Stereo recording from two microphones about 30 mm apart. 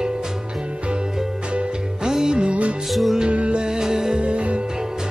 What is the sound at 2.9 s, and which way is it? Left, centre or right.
Music, centre.